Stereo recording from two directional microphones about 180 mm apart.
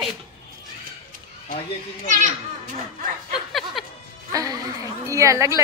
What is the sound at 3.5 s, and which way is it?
Music, centre (ahead or behind).